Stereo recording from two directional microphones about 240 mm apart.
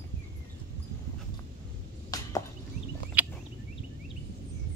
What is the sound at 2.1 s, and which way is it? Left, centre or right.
Chop, centre.